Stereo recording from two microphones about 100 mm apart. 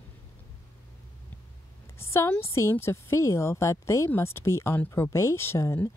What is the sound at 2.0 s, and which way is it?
Speech, 25° left (ahead or behind).